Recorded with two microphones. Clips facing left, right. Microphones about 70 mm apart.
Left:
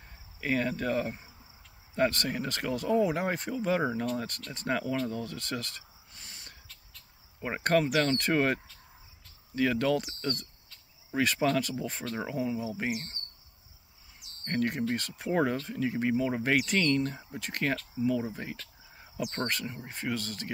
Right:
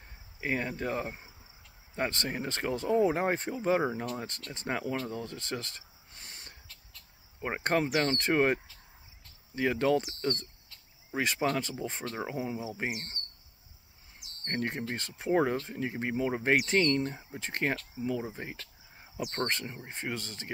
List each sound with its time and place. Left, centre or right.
0.4 s speech: centre
9.6 s speech: right
14.4 s speech: right